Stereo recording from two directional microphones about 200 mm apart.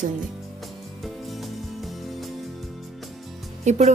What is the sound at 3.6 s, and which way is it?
Speech, 35° right (ahead or behind).